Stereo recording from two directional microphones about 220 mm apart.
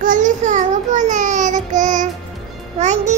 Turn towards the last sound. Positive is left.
turn(degrees=-30)  # may be behind; listen again after turning